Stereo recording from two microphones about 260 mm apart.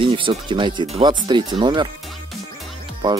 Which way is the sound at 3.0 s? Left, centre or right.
Centre.